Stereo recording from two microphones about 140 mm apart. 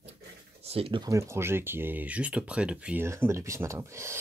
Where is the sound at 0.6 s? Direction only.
45° right (ahead or behind).